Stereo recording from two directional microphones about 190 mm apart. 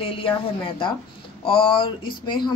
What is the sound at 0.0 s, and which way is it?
Speech, 30° left (ahead or behind).